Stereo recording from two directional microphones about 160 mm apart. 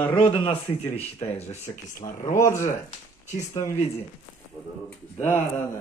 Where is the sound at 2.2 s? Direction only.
15° left (ahead or behind).